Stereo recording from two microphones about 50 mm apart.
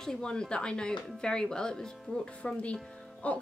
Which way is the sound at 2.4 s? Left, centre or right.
Left.